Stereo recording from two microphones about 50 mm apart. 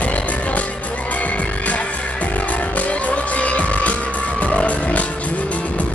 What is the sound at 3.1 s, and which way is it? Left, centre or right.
Music, left.